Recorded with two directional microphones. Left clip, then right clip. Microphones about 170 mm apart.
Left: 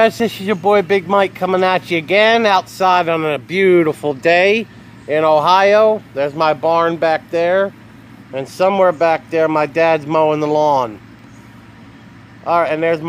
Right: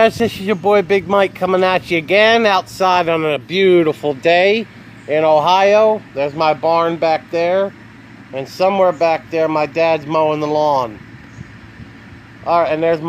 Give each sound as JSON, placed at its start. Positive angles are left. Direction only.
{"t": 0.0, "sound": "speech", "side_deg": 5}
{"t": 12.4, "sound": "speech", "side_deg": 0}